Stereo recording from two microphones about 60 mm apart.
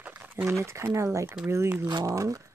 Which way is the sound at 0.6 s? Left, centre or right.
Right.